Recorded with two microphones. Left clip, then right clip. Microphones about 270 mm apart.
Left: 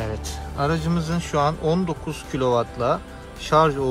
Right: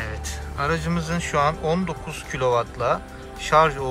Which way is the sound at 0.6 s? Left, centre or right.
Centre.